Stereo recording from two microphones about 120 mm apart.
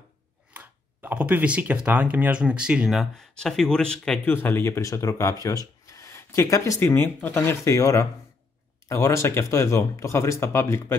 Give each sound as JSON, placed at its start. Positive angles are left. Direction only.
{"t": 0.5, "sound": "speech", "side_deg": -15}
{"t": 4.3, "sound": "speech", "side_deg": 15}